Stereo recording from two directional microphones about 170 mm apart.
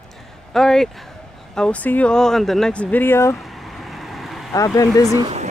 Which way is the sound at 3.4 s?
Centre (ahead or behind).